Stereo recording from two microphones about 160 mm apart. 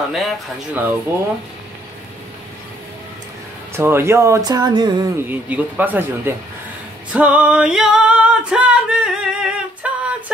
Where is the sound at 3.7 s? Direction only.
15° right (ahead or behind).